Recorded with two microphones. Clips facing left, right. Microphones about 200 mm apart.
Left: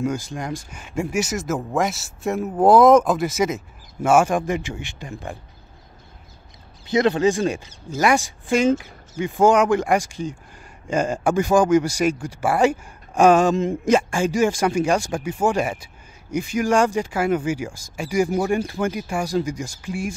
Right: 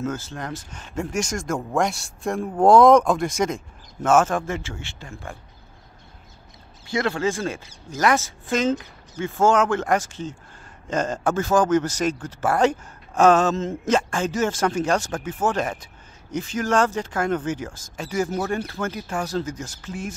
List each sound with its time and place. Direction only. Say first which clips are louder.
0.0 s speech: left 3 dB; 15° left (ahead or behind)
6.9 s speech: left 6 dB; 20° left (ahead or behind)